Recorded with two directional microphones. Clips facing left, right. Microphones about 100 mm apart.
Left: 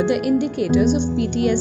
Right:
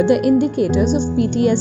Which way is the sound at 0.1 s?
35° right (ahead or behind).